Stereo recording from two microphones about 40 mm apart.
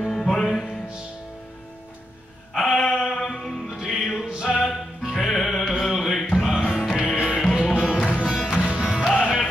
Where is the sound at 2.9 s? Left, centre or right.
Centre.